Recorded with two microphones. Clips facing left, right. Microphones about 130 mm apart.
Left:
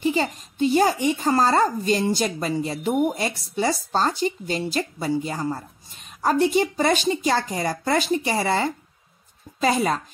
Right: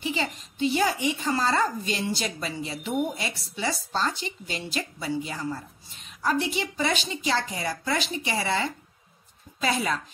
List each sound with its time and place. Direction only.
0.0 s speech: 45° left (ahead or behind)